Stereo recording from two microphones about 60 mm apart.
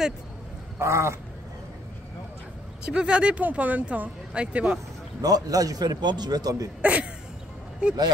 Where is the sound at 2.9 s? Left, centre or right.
Centre.